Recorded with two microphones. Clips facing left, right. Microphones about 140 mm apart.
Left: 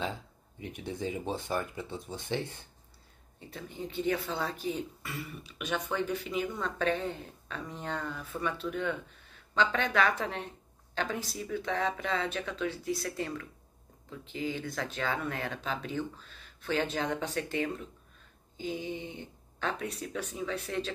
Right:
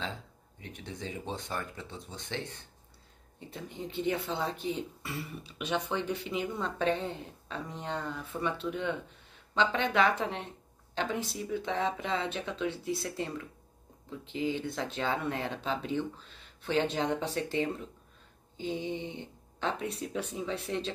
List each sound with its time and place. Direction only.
0.6 s speech: 10° left (ahead or behind)
3.3 s speech: 25° right (ahead or behind)